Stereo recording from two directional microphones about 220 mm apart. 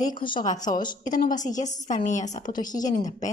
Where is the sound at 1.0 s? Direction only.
35° left (ahead or behind).